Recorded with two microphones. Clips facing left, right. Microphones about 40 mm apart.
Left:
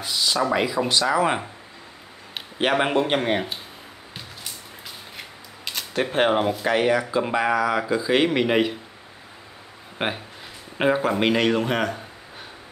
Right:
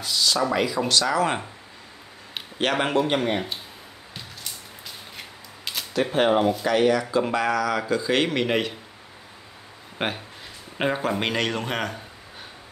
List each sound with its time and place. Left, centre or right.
0.0 s speech: centre
2.6 s speech: centre
3.1 s speech: left
6.0 s speech: left; by 8.7 s centre
9.9 s a man's voice: centre